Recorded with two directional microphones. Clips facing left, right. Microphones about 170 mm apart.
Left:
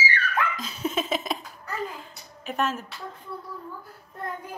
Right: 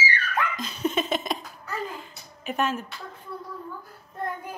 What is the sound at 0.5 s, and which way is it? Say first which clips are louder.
Laughter: right 2 dB; 5° left (ahead or behind).